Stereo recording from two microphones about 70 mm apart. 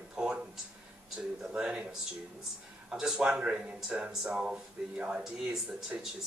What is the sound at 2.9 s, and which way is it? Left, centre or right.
Speech, centre.